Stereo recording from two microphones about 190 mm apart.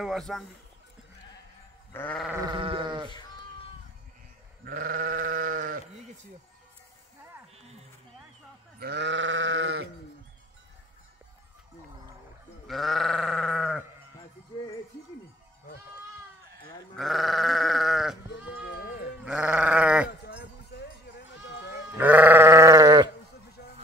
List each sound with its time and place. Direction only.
0.0 s a man's voice: centre (ahead or behind)
1.9 s sheep: 10° left (ahead or behind)
2.3 s sheep: 25° right (ahead or behind)
4.6 s sheep: 45° right (ahead or behind)
8.7 s sheep: 60° right (ahead or behind)
12.6 s sheep: centre (ahead or behind)
16.9 s sheep: centre (ahead or behind)
19.2 s sheep: 5° right (ahead or behind)
20.2 s sheep: 55° left (ahead or behind)
21.9 s sheep: 10° right (ahead or behind)